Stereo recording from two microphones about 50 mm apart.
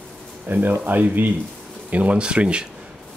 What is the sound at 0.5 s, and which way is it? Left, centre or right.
Speech, right.